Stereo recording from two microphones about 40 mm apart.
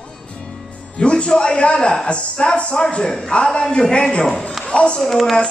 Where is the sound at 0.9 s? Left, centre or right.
Left.